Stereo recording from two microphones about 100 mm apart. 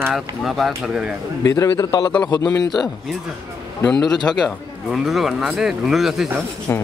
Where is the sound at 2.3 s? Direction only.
50° left (ahead or behind).